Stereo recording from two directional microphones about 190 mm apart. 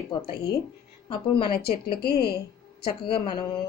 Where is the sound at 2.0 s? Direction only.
55° left (ahead or behind).